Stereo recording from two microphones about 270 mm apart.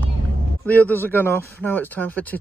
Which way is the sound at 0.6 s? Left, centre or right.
Centre.